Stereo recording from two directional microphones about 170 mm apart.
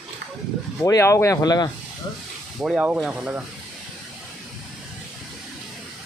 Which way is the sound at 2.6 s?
5° right (ahead or behind).